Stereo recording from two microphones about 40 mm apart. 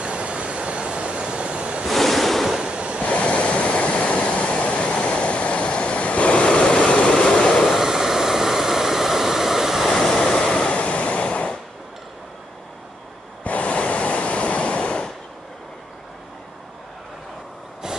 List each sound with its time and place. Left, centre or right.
0.0 s vehicle: right
1.9 s waves: centre
2.7 s waves: right
3.0 s waves: left
7.2 s vehicle: centre
7.6 s a sound: centre
9.8 s waves: centre; by 11.5 s left
13.4 s waves: left